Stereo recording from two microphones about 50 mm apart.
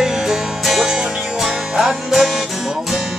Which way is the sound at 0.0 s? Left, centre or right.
Centre.